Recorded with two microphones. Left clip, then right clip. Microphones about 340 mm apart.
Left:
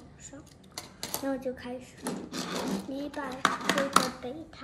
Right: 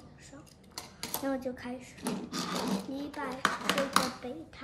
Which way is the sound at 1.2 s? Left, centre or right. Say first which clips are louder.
Left 1 dB; centre.